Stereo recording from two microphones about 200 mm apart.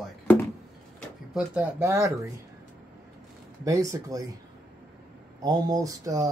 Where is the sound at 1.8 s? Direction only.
15° right (ahead or behind).